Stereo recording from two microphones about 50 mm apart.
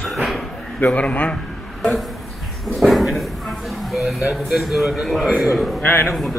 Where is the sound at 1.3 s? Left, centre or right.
Centre.